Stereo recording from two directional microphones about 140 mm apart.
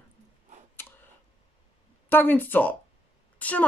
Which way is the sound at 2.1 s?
15° left (ahead or behind).